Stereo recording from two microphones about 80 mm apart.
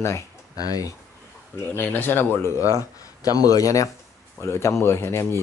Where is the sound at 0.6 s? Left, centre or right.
Left.